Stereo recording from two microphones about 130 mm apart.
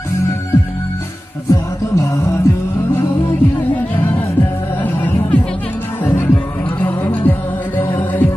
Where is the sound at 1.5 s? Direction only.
20° left (ahead or behind).